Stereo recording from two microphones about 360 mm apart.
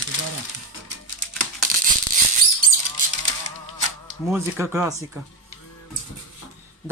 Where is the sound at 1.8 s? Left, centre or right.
Right.